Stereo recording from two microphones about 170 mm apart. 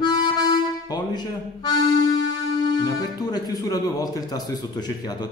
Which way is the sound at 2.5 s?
25° left (ahead or behind).